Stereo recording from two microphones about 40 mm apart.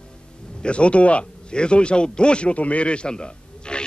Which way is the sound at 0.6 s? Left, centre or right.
Left.